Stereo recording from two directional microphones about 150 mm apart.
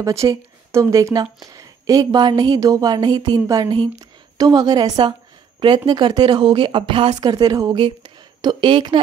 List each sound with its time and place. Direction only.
0.0 s a woman's voice: 20° right (ahead or behind)